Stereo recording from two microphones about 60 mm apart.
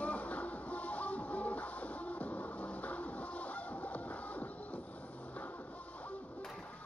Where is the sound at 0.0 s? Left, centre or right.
Left.